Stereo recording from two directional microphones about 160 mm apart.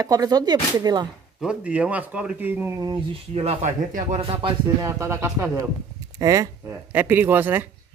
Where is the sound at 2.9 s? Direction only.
35° right (ahead or behind).